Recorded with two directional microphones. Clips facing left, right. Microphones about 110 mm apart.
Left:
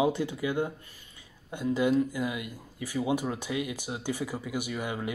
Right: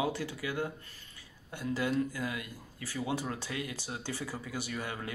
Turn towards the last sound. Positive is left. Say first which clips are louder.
# left 5 dB
turn(degrees=15)  # may be behind; listen again after turning